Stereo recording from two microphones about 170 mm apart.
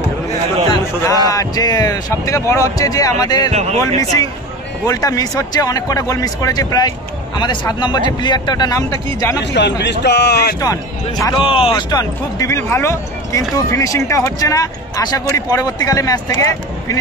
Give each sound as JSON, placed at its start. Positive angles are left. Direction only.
{"t": 1.3, "sound": "speech", "side_deg": 20}
{"t": 3.5, "sound": "speech", "side_deg": -40}
{"t": 4.8, "sound": "speech", "side_deg": 20}
{"t": 9.4, "sound": "a man's voice", "side_deg": 90}
{"t": 10.6, "sound": "speech", "side_deg": 20}